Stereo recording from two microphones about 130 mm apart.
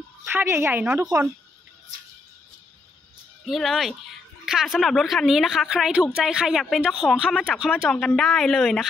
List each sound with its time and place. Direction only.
0.2 s a woman's voice: 15° right (ahead or behind)
3.4 s speech: centre (ahead or behind)